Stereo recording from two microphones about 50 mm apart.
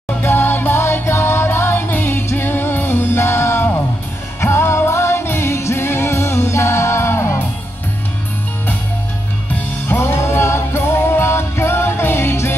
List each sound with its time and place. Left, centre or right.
0.2 s music: left
9.9 s music: left